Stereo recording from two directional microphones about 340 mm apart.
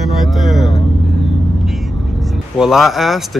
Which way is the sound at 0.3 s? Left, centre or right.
Centre.